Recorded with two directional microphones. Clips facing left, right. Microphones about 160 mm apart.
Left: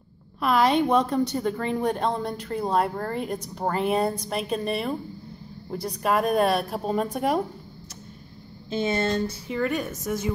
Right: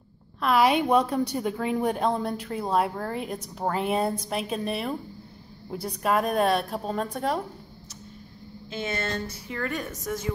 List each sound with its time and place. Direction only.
0.4 s a woman's voice: 5° right (ahead or behind); by 7.4 s 10° left (ahead or behind)
8.6 s speech: 35° left (ahead or behind)
9.5 s a woman's voice: 10° left (ahead or behind)